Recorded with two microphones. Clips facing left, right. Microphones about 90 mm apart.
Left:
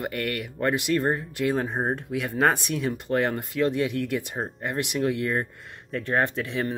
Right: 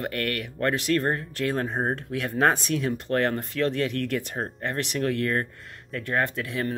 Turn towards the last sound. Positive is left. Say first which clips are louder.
# left 1 dB
turn(degrees=20)  # may be behind; listen again after turning